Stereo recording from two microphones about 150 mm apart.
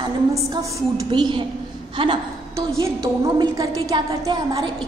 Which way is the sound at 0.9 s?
30° right (ahead or behind).